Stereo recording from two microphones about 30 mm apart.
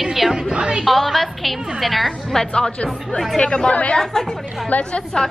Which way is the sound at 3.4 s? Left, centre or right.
Left.